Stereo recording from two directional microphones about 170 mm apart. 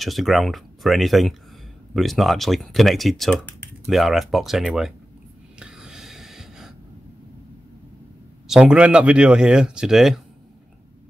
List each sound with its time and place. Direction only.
0.0 s speech: centre (ahead or behind)
5.6 s gasp: 5° right (ahead or behind)
8.5 s speech: 5° right (ahead or behind)